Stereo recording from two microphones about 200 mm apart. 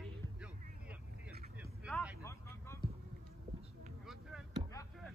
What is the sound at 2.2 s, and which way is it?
Vehicle, 15° left (ahead or behind).